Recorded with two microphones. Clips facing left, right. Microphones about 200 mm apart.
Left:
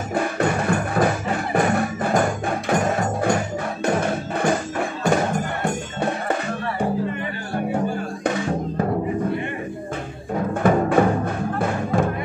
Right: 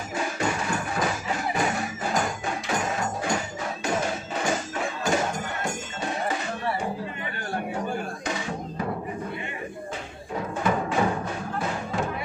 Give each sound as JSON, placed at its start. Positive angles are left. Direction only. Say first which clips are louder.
{"t": 0.1, "sound": "music", "louder": "left 6 dB", "side_deg": 55}
{"t": 10.5, "sound": "music", "louder": "left 8 dB", "side_deg": 55}